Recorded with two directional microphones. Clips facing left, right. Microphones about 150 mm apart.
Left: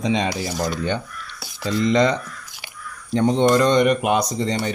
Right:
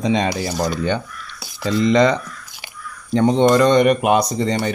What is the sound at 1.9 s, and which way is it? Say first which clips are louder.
Speech: right 3 dB; 80° right.